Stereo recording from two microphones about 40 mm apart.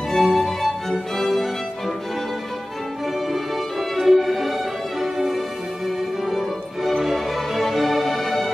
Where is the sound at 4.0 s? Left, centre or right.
Centre.